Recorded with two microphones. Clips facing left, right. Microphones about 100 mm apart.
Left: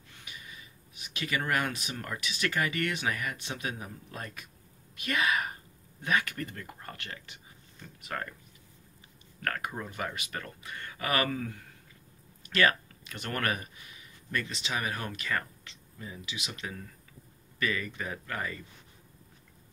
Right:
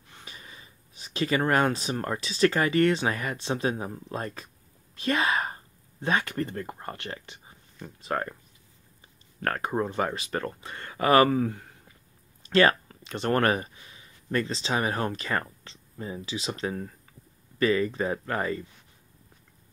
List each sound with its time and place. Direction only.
0.2 s speech: 35° right (ahead or behind)
9.4 s speech: 35° right (ahead or behind)